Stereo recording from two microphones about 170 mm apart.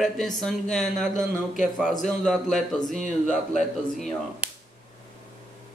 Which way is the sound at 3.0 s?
45° left (ahead or behind).